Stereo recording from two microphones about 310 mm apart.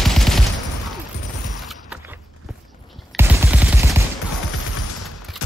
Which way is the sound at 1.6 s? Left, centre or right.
Centre.